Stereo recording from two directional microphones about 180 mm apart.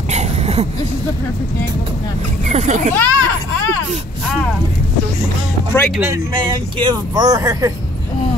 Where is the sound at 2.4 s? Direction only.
40° right (ahead or behind).